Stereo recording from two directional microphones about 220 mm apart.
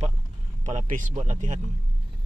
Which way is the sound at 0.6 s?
35° right (ahead or behind).